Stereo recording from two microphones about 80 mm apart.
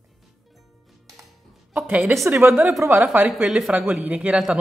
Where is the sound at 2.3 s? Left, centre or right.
Right.